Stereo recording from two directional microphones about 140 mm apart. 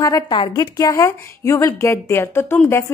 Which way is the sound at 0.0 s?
30° left (ahead or behind).